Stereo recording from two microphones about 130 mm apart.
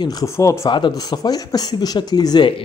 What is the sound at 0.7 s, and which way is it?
A man's voice, 35° left (ahead or behind).